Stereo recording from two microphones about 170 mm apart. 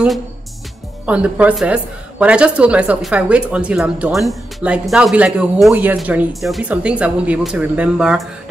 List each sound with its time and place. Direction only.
1.0 s a woman's voice: 10° right (ahead or behind)